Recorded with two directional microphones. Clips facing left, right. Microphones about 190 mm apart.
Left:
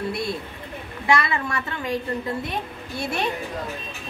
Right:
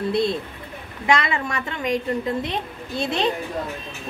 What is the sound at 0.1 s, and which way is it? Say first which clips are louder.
A woman's voice: right 6 dB; 25° right (ahead or behind).